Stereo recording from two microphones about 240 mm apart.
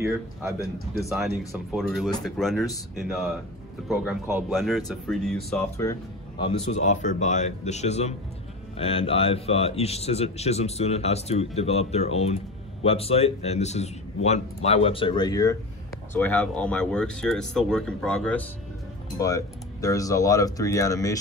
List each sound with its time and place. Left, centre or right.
0.0 s speech: centre
6.4 s speech: left; by 21.2 s centre